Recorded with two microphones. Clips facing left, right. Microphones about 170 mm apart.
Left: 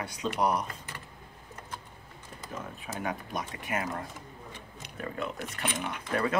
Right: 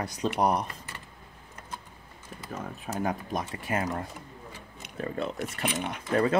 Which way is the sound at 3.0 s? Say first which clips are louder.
Right 4 dB; 40° right (ahead or behind).